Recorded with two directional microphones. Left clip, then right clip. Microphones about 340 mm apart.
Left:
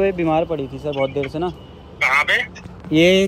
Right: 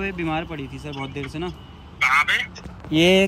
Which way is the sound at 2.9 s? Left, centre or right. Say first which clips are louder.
Left 3 dB; right.